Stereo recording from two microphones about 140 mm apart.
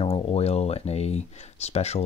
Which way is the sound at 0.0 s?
45° left (ahead or behind).